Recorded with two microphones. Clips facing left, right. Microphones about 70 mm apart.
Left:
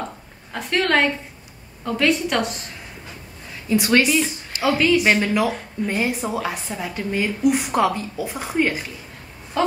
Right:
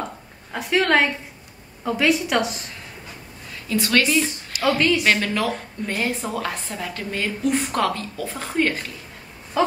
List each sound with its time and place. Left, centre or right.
0.5 s a woman's voice: centre
3.6 s a woman's voice: left
4.6 s a woman's voice: centre
9.6 s a woman's voice: centre